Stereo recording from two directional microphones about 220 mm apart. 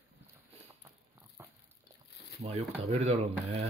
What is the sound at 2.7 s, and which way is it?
Speech, 25° right (ahead or behind).